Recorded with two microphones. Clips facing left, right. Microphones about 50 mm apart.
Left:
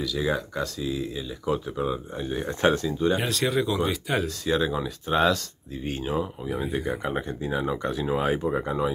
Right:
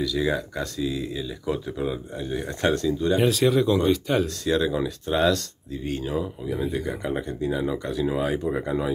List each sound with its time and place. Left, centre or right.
0.1 s speech: centre
3.2 s speech: centre